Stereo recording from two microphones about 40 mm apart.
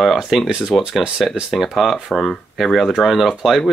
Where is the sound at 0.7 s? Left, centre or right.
Centre.